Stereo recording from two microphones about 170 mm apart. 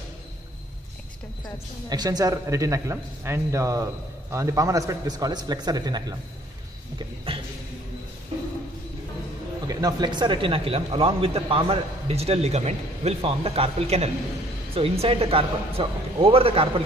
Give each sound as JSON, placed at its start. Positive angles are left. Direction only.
{"t": 1.9, "sound": "a man's voice", "side_deg": -25}
{"t": 7.0, "sound": "a sound", "side_deg": -30}
{"t": 9.7, "sound": "speech", "side_deg": -20}